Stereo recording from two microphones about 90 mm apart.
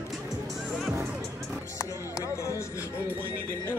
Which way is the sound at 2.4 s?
35° left (ahead or behind).